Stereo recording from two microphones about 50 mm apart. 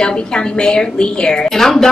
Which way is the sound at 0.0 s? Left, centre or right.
Centre.